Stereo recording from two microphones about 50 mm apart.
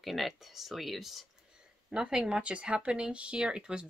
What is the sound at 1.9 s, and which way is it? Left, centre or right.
Speech, centre.